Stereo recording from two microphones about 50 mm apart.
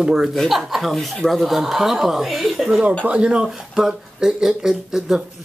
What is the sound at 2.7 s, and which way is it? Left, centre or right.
Speech, right.